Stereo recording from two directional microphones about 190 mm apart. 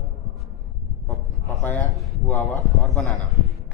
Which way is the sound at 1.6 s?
10° left (ahead or behind).